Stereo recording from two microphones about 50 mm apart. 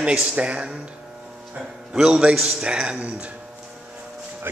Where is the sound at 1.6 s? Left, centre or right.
Centre.